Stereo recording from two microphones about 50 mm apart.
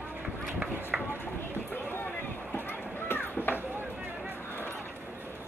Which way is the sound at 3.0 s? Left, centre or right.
Left.